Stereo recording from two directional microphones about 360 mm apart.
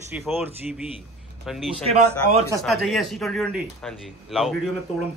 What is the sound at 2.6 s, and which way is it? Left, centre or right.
Speech, centre.